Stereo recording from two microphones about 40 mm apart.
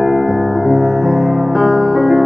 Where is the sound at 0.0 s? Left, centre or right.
Centre.